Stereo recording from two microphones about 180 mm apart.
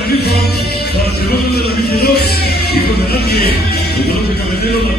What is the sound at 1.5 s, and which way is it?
Music, 60° left (ahead or behind).